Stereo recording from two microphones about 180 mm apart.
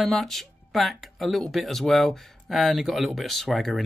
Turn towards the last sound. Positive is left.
turn(degrees=0)  # may be behind; listen again after turning